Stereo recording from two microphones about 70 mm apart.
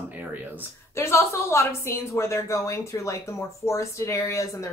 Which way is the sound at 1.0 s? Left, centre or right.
Left.